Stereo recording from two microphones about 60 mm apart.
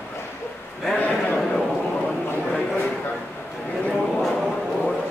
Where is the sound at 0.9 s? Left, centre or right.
Left.